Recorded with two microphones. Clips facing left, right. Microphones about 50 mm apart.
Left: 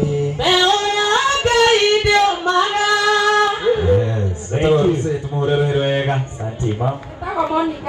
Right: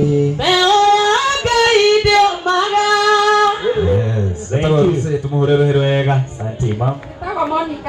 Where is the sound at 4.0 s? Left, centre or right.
Left.